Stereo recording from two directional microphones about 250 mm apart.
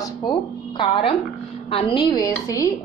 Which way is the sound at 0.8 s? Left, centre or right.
Centre.